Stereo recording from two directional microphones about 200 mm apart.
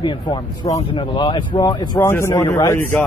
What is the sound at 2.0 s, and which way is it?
Speech, 10° left (ahead or behind).